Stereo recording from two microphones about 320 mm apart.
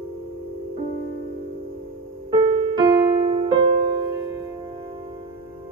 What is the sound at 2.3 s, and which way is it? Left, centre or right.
Music, centre.